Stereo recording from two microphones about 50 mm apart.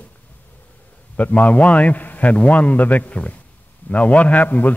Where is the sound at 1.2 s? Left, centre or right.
Left.